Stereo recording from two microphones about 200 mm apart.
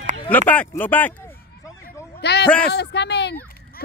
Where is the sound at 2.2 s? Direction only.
55° left (ahead or behind).